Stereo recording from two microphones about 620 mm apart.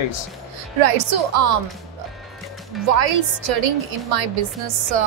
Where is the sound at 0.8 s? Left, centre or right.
Right.